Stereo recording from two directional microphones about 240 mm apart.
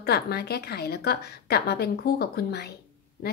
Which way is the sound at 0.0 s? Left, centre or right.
Left.